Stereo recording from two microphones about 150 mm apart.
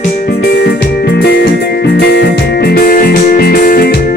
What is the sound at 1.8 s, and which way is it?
Music, 90° left.